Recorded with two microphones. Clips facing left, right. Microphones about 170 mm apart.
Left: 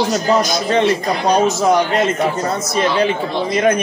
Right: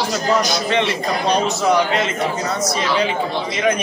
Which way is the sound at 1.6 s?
45° left (ahead or behind).